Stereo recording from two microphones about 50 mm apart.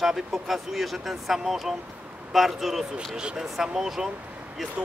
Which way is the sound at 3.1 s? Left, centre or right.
Centre.